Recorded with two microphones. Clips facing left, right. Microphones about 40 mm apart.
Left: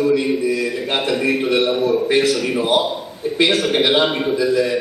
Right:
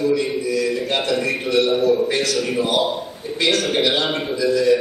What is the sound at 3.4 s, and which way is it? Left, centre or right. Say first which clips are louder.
A man's voice: left 2 dB; left.